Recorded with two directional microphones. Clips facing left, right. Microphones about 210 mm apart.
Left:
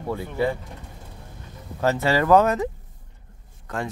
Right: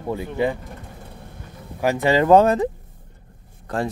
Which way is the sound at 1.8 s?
15° right (ahead or behind).